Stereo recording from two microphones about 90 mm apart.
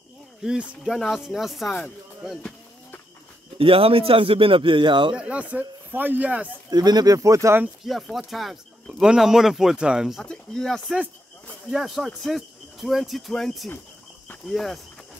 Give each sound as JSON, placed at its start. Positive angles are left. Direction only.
{"t": 0.4, "sound": "speech", "side_deg": -5}
{"t": 3.5, "sound": "speech", "side_deg": -90}
{"t": 5.1, "sound": "a man's voice", "side_deg": -15}
{"t": 6.7, "sound": "speech", "side_deg": -50}
{"t": 7.2, "sound": "speech", "side_deg": -35}
{"t": 7.8, "sound": "speech", "side_deg": 0}
{"t": 10.2, "sound": "speech", "side_deg": 10}